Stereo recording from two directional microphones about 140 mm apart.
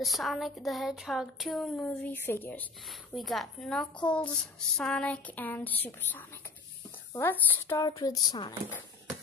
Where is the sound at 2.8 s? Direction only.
Centre (ahead or behind); by 7.9 s 15° left (ahead or behind).